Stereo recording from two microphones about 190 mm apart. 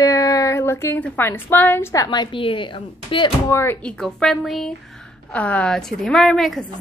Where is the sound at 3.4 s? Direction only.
10° left (ahead or behind).